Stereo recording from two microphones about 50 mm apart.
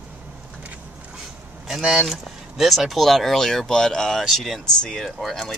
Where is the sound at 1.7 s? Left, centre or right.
Centre.